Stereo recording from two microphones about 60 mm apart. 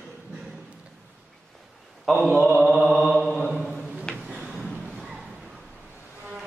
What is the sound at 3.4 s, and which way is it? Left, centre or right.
Mantra, centre.